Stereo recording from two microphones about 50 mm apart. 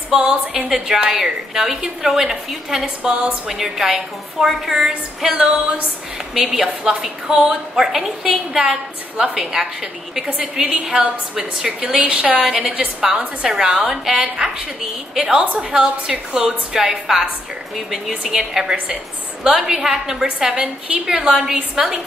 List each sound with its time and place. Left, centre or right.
0.1 s a woman's voice: centre
0.7 s a woman's voice: centre
3.4 s a woman's voice: centre
10.2 s a woman's voice: right
10.5 s a woman's voice: centre